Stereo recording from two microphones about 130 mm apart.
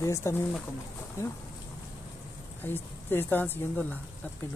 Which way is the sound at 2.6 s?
15° left (ahead or behind).